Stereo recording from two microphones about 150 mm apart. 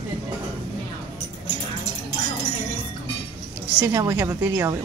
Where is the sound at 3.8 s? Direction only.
20° right (ahead or behind).